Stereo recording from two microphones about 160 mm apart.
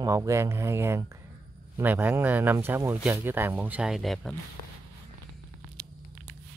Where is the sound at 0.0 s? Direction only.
20° right (ahead or behind); by 4.4 s centre (ahead or behind).